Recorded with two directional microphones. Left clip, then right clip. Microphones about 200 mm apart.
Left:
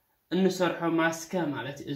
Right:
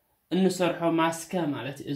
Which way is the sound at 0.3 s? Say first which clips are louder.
Right 1 dB; 30° right (ahead or behind).